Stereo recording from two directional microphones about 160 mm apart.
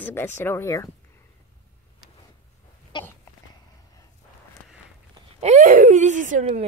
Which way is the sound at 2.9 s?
30° left (ahead or behind).